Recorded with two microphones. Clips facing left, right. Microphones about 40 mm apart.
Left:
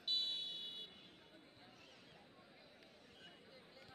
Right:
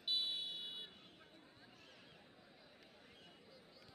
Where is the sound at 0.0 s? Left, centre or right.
Centre.